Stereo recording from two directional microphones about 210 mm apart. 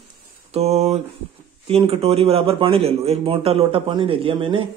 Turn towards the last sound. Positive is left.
turn(degrees=-25)  # may be behind; listen again after turning